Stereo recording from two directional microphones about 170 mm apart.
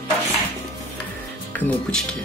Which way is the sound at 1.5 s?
5° left (ahead or behind).